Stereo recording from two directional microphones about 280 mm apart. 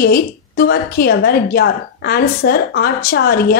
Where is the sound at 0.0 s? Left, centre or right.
Left.